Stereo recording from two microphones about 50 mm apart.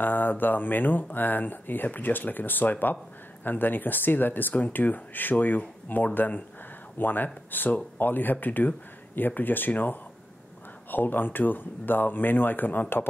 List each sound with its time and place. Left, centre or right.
0.0 s mantra: left
1.1 s speech: left